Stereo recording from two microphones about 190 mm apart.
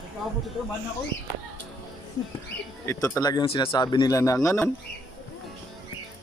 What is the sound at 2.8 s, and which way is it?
Speech, 15° left (ahead or behind).